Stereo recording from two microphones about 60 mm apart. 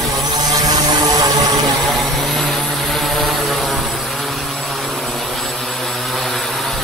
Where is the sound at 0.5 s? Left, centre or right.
Right.